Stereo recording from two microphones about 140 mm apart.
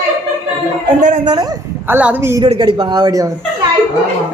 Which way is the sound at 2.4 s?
35° right (ahead or behind).